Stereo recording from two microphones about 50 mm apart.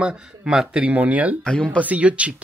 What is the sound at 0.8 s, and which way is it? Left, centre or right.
Speech, right.